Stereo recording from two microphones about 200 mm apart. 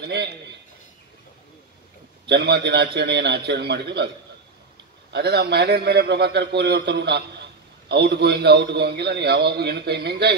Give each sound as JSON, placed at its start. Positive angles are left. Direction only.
{"t": 2.2, "sound": "a man's voice", "side_deg": -55}
{"t": 5.1, "sound": "a man's voice", "side_deg": -55}